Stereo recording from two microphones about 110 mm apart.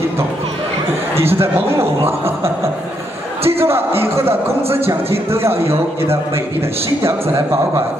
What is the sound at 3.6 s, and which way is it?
Speech, 20° right (ahead or behind).